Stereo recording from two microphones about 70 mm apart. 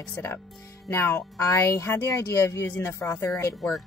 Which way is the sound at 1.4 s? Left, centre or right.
Left.